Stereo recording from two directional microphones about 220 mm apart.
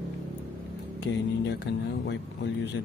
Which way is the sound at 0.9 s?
50° left (ahead or behind).